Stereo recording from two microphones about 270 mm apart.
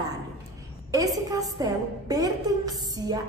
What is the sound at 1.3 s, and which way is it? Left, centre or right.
A woman's voice, centre.